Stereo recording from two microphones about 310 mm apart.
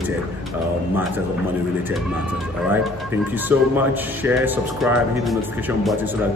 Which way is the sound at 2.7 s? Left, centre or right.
Centre.